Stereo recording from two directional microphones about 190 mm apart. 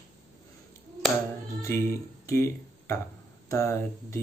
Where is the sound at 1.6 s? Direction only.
15° left (ahead or behind).